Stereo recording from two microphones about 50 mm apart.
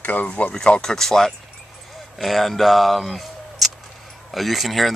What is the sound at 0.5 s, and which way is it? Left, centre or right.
Speech, left.